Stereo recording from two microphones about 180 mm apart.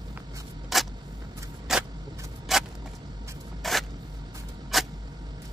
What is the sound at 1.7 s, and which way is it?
Vehicle, centre (ahead or behind).